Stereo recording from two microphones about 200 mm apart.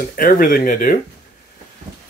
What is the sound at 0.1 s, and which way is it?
Speech, 45° left (ahead or behind).